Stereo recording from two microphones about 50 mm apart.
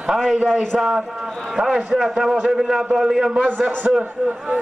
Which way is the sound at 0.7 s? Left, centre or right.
Centre.